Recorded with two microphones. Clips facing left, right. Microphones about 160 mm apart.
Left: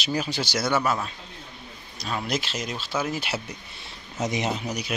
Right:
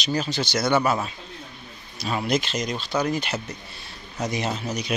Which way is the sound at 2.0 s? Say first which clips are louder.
Right 4 dB; 5° right (ahead or behind).